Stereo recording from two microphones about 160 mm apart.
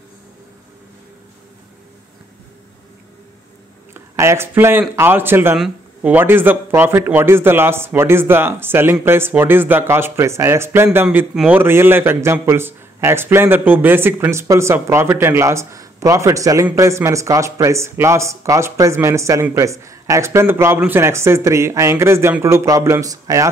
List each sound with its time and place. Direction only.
3.9 s a man's voice: 15° right (ahead or behind)